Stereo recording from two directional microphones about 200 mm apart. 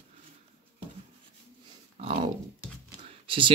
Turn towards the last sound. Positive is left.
turn(degrees=-25)  # may be behind; listen again after turning